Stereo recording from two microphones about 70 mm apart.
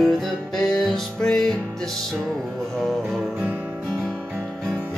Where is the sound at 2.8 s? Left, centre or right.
Centre.